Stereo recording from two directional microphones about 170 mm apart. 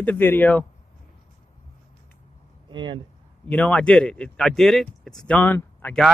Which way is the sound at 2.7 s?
30° right (ahead or behind).